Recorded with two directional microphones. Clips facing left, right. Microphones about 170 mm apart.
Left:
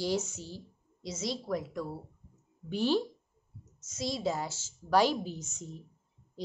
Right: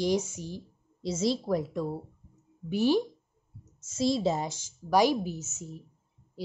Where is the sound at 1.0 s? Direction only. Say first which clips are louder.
Right 8 dB; 30° right (ahead or behind).